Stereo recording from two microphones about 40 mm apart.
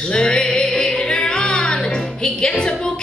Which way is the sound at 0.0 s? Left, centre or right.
Left.